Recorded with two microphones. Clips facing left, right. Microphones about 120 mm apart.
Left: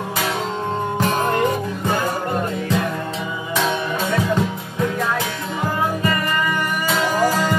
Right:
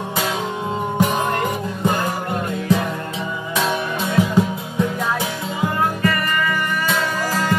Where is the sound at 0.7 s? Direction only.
10° right (ahead or behind).